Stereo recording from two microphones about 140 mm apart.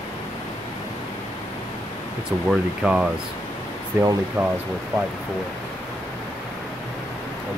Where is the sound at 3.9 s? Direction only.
15° right (ahead or behind).